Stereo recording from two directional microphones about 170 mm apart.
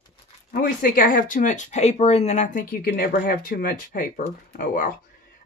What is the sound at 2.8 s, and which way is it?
Speech, 60° left (ahead or behind).